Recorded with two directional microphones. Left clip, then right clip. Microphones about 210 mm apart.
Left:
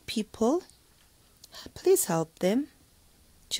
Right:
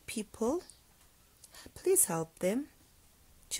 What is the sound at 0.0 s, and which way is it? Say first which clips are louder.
Speech: left 7 dB; 15° left (ahead or behind).